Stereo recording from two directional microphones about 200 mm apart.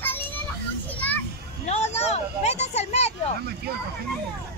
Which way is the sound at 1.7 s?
35° left (ahead or behind).